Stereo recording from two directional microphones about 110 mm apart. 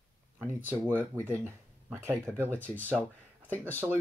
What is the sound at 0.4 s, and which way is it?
Speech, 20° right (ahead or behind).